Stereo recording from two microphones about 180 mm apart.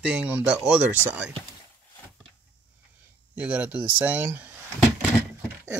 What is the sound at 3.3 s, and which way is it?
Speech, 10° right (ahead or behind).